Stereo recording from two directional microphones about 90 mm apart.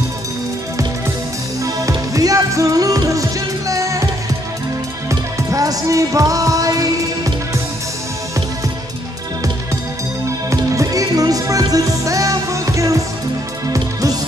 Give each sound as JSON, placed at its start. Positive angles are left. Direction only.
{"t": 1.6, "sound": "music", "side_deg": -40}
{"t": 5.5, "sound": "music", "side_deg": -40}
{"t": 10.5, "sound": "music", "side_deg": -40}